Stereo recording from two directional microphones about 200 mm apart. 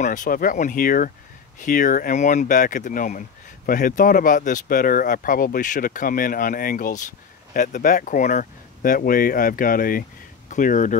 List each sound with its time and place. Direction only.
0.0 s speech: 40° left (ahead or behind)